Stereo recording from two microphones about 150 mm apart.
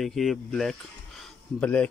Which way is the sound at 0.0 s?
Centre (ahead or behind).